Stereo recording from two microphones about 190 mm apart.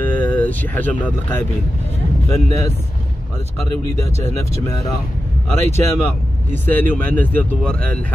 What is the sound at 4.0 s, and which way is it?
Speech, 15° left (ahead or behind).